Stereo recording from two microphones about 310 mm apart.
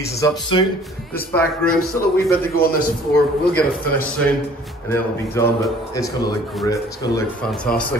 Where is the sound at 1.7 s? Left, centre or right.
Left.